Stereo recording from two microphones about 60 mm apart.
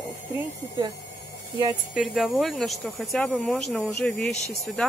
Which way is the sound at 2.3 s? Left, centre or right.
Centre.